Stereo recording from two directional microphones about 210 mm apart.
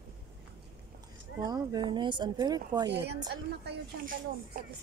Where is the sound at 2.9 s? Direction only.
50° right (ahead or behind).